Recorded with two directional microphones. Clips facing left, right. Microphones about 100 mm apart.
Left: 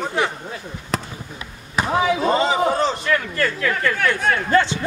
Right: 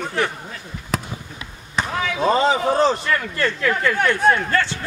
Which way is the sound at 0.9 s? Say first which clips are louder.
Even; centre (ahead or behind).